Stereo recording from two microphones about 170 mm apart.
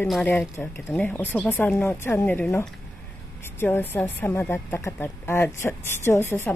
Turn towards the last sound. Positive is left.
turn(degrees=10)  # may be behind; listen again after turning